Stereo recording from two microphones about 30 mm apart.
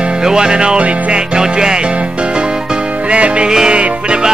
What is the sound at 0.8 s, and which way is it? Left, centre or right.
Music, right.